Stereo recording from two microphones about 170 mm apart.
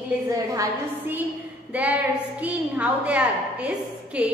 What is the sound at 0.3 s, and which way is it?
A woman's voice, 15° right (ahead or behind).